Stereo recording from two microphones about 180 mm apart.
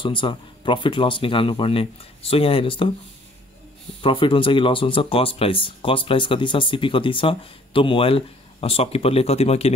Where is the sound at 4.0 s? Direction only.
30° left (ahead or behind).